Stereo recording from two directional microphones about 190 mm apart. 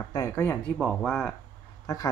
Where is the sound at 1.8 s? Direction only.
20° left (ahead or behind).